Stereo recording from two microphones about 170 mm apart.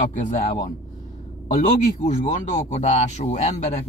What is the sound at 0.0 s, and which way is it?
Speech, 45° left (ahead or behind).